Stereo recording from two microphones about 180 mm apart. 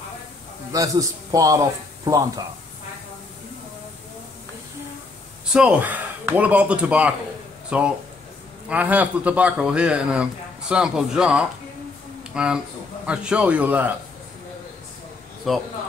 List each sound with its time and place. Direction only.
0.7 s a man's voice: 20° right (ahead or behind)
5.5 s a man's voice: 5° right (ahead or behind)
12.2 s a sound: 5° right (ahead or behind)
13.0 s a man's voice: 5° right (ahead or behind)
15.5 s a man's voice: centre (ahead or behind)